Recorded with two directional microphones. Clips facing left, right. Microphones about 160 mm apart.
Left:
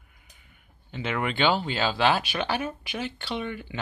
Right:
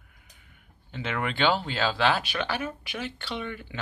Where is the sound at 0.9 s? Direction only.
5° left (ahead or behind).